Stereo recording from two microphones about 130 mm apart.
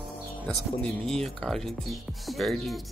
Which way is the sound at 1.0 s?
Centre (ahead or behind).